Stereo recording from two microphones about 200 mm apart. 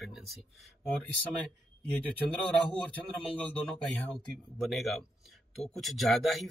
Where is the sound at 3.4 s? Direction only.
5° left (ahead or behind).